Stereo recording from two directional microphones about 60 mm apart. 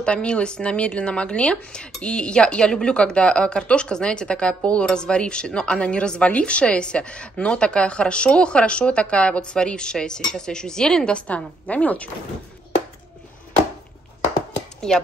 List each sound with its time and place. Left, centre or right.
0.0 s a woman's voice: centre
14.8 s a woman's voice: centre